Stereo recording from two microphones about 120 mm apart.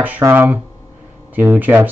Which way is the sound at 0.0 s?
15° right (ahead or behind).